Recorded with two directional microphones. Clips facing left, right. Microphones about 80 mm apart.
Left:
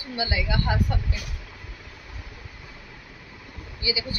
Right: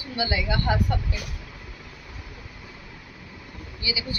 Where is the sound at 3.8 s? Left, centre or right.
Left.